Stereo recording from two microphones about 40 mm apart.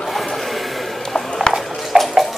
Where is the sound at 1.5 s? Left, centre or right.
Left.